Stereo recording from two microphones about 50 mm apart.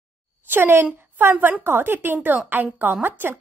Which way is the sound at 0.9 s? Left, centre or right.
Right.